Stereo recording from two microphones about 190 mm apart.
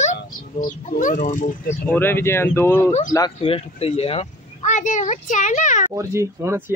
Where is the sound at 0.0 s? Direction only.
40° left (ahead or behind).